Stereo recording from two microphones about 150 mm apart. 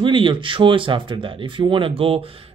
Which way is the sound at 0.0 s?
35° right (ahead or behind).